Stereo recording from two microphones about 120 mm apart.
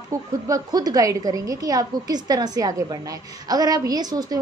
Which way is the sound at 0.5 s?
30° right (ahead or behind).